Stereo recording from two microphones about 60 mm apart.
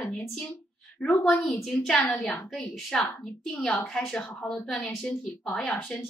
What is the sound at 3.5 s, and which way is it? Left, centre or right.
Speech, centre.